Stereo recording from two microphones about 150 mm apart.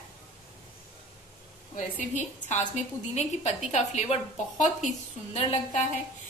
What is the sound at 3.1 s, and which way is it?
A woman's voice, 45° left (ahead or behind).